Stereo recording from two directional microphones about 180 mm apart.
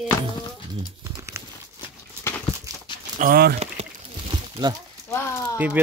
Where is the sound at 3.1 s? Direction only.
55° right (ahead or behind).